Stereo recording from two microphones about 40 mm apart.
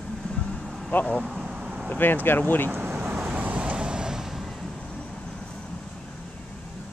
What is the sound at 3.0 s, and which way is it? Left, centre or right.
Vehicle, right.